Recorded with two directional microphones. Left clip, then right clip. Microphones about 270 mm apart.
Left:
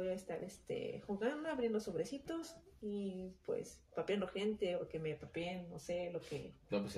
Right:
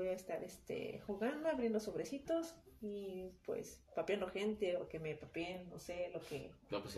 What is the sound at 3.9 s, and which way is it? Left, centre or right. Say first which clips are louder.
Speech: even; centre.